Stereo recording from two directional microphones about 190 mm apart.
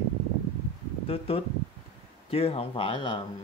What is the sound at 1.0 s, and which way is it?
Speech, 30° left (ahead or behind).